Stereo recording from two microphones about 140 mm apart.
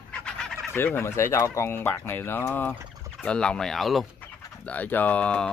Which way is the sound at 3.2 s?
5° left (ahead or behind).